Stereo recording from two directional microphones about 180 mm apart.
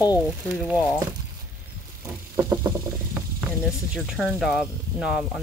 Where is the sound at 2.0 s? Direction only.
15° right (ahead or behind).